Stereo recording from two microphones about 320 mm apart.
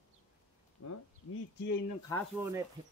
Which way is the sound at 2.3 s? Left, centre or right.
Centre.